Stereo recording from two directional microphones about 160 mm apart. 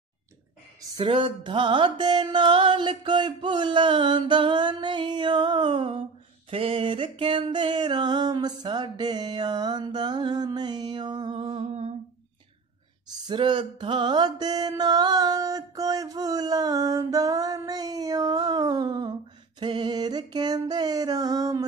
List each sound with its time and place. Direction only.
0.9 s mantra: 30° right (ahead or behind)
13.1 s mantra: 30° right (ahead or behind)